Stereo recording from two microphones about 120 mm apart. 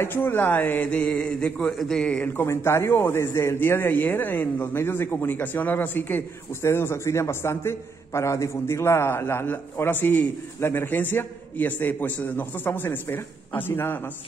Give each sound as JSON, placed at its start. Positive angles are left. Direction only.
{"t": 0.0, "sound": "speech", "side_deg": 15}